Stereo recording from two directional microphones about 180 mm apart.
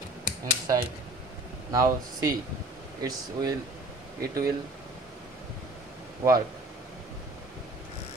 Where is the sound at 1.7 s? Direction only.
20° right (ahead or behind).